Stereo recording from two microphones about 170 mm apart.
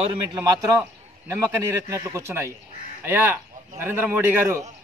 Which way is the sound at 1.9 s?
20° right (ahead or behind).